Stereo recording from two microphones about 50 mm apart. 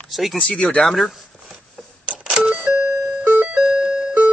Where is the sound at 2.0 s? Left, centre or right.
Right.